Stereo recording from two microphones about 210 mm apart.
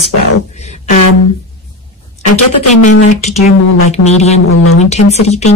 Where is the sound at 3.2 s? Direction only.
35° left (ahead or behind).